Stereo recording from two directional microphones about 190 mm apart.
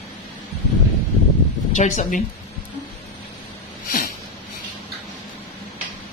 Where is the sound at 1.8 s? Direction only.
40° left (ahead or behind).